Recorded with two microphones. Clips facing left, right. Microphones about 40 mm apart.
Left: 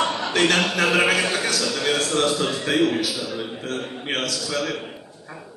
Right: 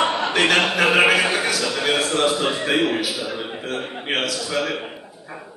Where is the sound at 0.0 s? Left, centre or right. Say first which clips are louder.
Right 2 dB; right.